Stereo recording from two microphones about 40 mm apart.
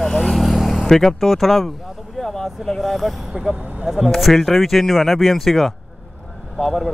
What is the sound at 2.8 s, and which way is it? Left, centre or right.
Speech, centre.